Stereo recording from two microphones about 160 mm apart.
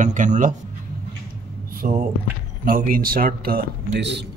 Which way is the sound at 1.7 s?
60° right (ahead or behind).